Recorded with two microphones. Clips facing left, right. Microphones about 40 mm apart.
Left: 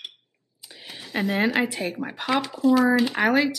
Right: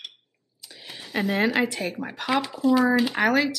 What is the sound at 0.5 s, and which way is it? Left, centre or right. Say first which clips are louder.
Speech: even; centre.